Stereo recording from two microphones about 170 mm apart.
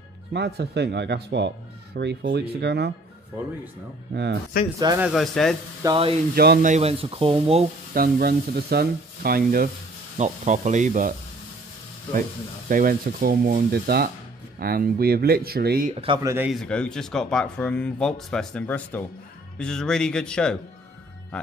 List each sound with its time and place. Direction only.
0.3 s speech: 80° right
4.1 s speech: 75° right (ahead or behind)
4.7 s speech: 20° right (ahead or behind)
5.0 s speech: centre (ahead or behind)
5.8 s speech: 20° right (ahead or behind)
6.3 s speech: 70° right (ahead or behind)
6.6 s speech: 40° right (ahead or behind)
8.2 s speech: 65° right (ahead or behind)
10.1 s speech: 45° right (ahead or behind)
12.6 s speech: 55° right (ahead or behind)
16.2 s speech: 15° right (ahead or behind)
16.4 s speech: 5° left (ahead or behind)